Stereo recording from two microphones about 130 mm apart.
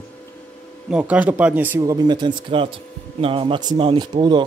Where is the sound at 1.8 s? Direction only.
35° right (ahead or behind).